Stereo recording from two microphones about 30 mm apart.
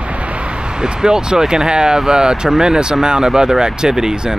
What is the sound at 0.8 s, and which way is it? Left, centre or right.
Speech, right.